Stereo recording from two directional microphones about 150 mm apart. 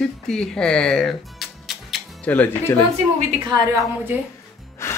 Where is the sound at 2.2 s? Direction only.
10° left (ahead or behind).